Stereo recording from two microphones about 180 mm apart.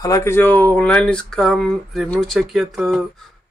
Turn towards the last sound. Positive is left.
turn(degrees=0)  # may be behind; listen again after turning